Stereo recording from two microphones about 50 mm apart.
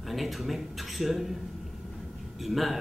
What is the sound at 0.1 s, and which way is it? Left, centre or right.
Speech, centre.